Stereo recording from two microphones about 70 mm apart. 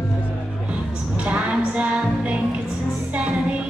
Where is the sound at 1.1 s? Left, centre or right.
Centre.